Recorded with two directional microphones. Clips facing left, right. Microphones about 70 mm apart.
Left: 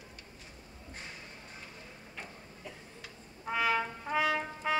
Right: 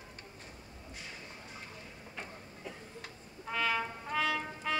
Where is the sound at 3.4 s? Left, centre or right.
Centre.